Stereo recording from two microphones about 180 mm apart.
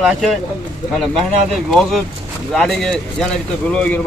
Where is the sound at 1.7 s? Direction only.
Centre (ahead or behind).